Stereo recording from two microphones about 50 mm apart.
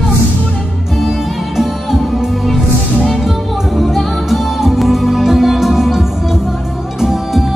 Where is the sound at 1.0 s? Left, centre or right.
Centre.